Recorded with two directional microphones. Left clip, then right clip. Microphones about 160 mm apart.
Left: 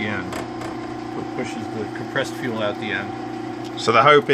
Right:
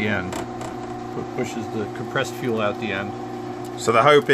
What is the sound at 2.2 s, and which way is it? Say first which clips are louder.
Speech: right 1 dB; 60° right (ahead or behind).